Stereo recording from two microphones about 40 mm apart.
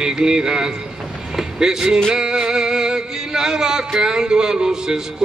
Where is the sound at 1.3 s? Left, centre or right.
Centre.